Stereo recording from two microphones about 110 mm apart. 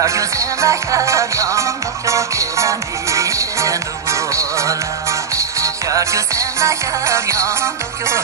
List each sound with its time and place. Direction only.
0.0 s music: 30° right (ahead or behind)